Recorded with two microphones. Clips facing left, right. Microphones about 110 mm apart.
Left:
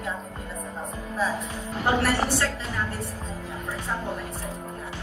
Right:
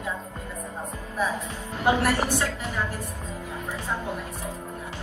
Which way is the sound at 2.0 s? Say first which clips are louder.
Even; 30° left (ahead or behind).